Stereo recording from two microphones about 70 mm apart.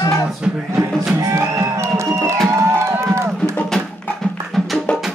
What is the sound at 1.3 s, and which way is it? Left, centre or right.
Music, right.